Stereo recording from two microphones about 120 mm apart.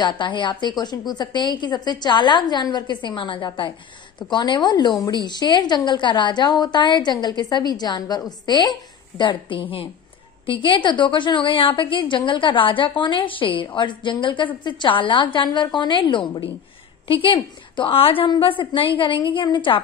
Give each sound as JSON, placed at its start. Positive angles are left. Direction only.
{"t": 0.0, "sound": "a woman's voice", "side_deg": 40}